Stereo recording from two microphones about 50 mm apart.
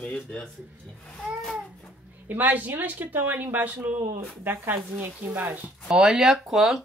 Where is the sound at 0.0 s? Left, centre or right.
Left.